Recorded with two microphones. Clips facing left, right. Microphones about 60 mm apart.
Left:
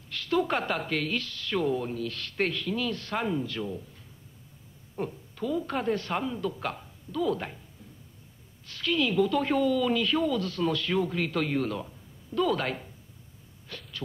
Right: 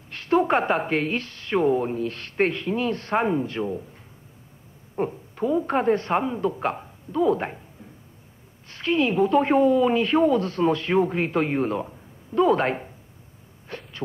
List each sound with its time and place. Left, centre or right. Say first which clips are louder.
0.1 s a woman's voice: right 7 dB; right
4.9 s a woman's voice: right 7 dB; right
8.6 s a woman's voice: right 5 dB; right
13.7 s a sound: right 5 dB; right